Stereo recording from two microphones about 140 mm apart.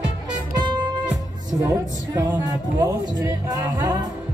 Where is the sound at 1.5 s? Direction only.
30° right (ahead or behind).